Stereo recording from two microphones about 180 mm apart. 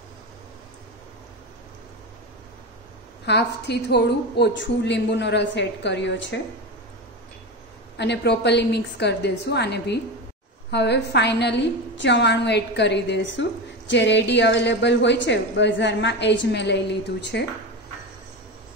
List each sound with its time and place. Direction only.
3.3 s a woman's voice: 70° left (ahead or behind); by 6.4 s 85° left
8.0 s a woman's voice: 70° left (ahead or behind)